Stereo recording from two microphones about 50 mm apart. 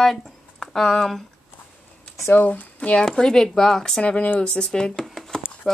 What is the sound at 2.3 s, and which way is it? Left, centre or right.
Speech, left.